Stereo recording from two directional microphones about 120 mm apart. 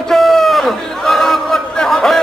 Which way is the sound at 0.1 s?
Centre (ahead or behind).